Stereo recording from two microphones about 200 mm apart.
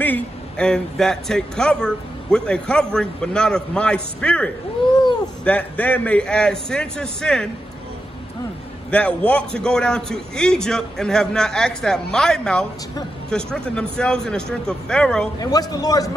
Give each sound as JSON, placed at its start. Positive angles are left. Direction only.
{"t": 0.0, "sound": "a man's voice", "side_deg": 5}
{"t": 8.9, "sound": "a man's voice", "side_deg": 5}
{"t": 15.4, "sound": "a man's voice", "side_deg": 20}